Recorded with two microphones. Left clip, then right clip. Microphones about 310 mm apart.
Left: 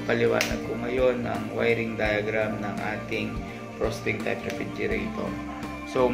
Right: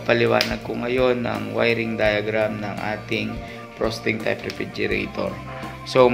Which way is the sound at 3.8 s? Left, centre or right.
Right.